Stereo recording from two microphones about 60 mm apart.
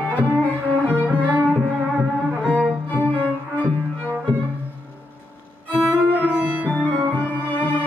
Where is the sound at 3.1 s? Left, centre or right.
Left.